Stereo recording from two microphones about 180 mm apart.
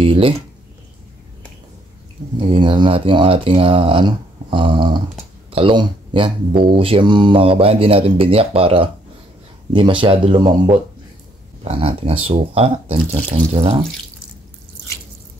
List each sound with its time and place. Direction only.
0.0 s speech: 30° right (ahead or behind)
2.5 s speech: 25° right (ahead or behind)
11.6 s speech: 35° right (ahead or behind)